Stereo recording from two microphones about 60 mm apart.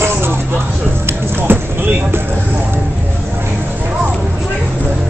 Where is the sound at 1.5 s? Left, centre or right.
Right.